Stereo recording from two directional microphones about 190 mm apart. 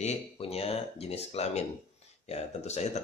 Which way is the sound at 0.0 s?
30° left (ahead or behind).